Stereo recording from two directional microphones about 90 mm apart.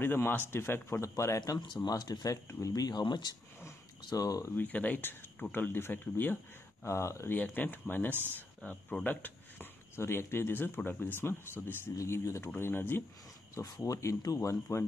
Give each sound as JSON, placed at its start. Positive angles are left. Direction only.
{"t": 0.0, "sound": "speech", "side_deg": 25}
{"t": 1.4, "sound": "speech", "side_deg": 50}
{"t": 3.0, "sound": "speech", "side_deg": 55}
{"t": 4.1, "sound": "speech", "side_deg": 45}
{"t": 4.6, "sound": "speech", "side_deg": 15}
{"t": 7.3, "sound": "speech", "side_deg": 20}
{"t": 8.1, "sound": "speech", "side_deg": -20}
{"t": 8.6, "sound": "speech", "side_deg": 20}